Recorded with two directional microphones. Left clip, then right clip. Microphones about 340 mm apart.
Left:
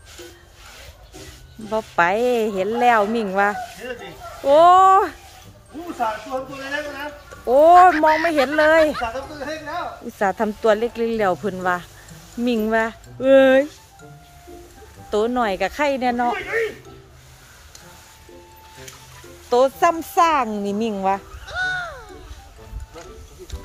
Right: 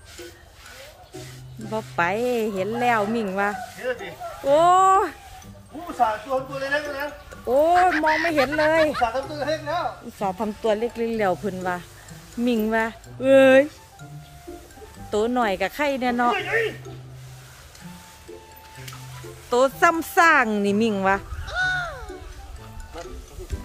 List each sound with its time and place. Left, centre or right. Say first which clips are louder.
1.7 s speech: left 5 dB; centre
3.8 s snake: right 4 dB; centre
4.5 s speech: left 5 dB; centre
7.4 s speech: left 7 dB; centre
9.0 s speech: right 3 dB; centre
10.2 s speech: left 6 dB; centre
15.0 s speech: left 2 dB; centre
16.3 s speech: even; right
19.5 s speech: left 2 dB; centre